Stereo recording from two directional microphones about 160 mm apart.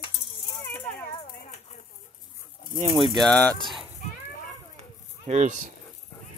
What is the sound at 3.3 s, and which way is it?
Speech, 10° left (ahead or behind).